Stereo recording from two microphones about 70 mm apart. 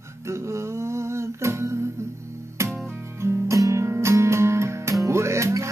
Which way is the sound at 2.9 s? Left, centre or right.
Right.